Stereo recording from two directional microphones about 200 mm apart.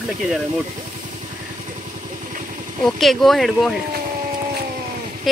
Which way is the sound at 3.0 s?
Centre (ahead or behind).